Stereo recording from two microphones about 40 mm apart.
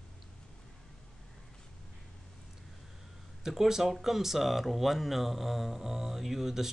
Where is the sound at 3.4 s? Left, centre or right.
Centre.